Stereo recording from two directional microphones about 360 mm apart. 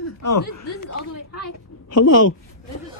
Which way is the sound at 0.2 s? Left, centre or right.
Left.